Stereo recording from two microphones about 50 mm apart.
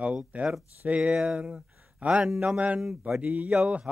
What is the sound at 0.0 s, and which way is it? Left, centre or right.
Speech, right.